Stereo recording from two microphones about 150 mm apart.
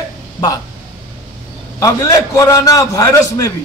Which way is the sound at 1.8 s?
20° left (ahead or behind).